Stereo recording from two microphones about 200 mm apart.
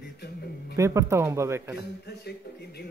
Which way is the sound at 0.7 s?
15° right (ahead or behind).